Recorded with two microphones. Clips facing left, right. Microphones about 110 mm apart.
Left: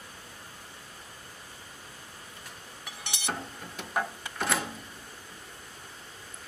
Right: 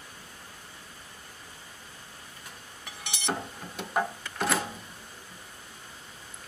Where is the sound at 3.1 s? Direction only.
Centre (ahead or behind).